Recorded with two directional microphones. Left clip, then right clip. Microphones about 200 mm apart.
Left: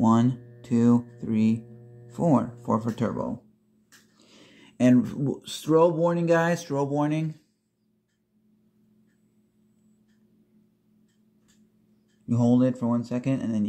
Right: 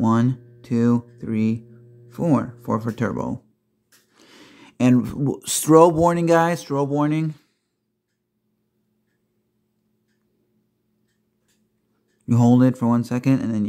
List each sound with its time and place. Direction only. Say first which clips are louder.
0.0 s speech: right 2 dB; 15° right (ahead or behind)
4.2 s a sound: right 8 dB; 25° right (ahead or behind)
5.4 s speech: right 8 dB; 40° right (ahead or behind)
12.3 s speech: right 5 dB; 35° right (ahead or behind)